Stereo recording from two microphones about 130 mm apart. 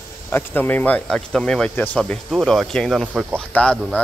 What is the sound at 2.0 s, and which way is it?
Speech, 5° left (ahead or behind).